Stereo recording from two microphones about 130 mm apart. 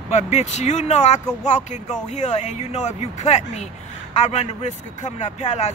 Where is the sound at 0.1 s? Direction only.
60° left (ahead or behind).